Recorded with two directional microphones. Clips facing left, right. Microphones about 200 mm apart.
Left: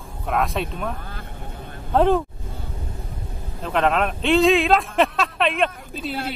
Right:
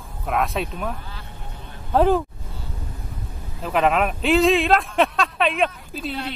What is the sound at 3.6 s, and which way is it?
Speech, 5° right (ahead or behind).